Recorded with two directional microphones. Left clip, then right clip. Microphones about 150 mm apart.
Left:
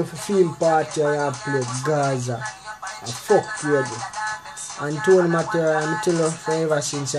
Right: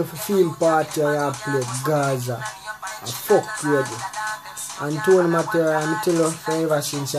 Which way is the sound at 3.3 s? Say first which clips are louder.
Even; 35° left (ahead or behind).